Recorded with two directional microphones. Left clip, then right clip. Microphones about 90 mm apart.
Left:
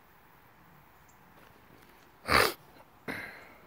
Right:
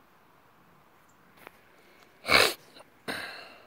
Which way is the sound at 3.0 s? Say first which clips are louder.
Right 4 dB; 25° left (ahead or behind).